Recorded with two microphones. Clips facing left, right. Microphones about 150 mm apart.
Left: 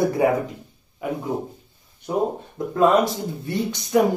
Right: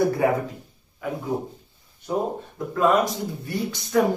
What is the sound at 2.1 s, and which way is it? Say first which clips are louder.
Speech: left 2 dB; 30° left (ahead or behind).